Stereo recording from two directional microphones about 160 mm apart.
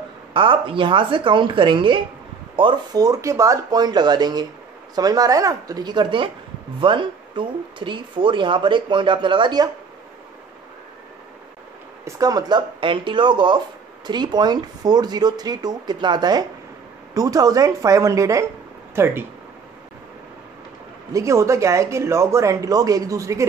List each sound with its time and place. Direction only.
0.3 s speech: 35° right (ahead or behind)
12.0 s speech: 25° right (ahead or behind)
21.1 s speech: 20° right (ahead or behind)